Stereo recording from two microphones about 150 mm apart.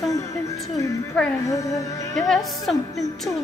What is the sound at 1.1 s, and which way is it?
Speech, 5° left (ahead or behind).